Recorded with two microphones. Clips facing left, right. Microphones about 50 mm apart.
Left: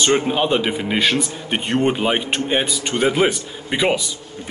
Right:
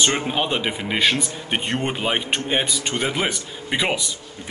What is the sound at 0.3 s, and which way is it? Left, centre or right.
Speech, centre.